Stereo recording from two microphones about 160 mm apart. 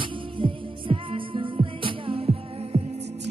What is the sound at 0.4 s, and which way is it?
Music, 30° right (ahead or behind).